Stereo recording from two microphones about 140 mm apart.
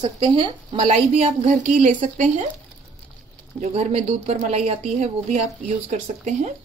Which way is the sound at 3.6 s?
50° right (ahead or behind).